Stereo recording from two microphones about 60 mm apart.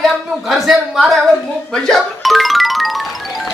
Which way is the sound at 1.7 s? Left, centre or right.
Centre.